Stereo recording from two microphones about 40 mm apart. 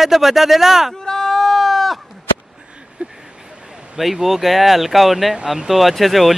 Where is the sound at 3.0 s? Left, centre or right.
Right.